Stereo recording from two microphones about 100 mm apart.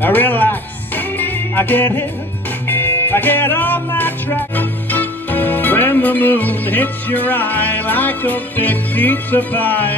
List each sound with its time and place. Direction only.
0.0 s music: 20° left (ahead or behind)